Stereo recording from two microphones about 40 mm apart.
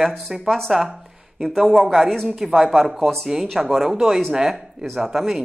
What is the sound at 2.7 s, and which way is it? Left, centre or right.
Speech, centre.